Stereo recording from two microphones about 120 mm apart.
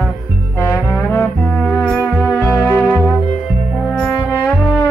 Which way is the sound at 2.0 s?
15° left (ahead or behind).